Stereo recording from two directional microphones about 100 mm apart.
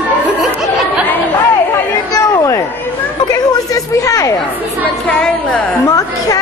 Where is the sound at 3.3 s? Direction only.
35° left (ahead or behind).